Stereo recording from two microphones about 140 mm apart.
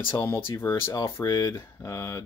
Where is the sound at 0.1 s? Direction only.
20° left (ahead or behind).